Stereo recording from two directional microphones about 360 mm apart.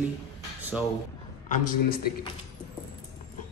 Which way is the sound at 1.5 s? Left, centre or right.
Left.